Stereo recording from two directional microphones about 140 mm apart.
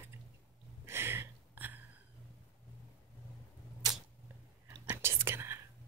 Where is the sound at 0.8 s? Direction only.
15° right (ahead or behind).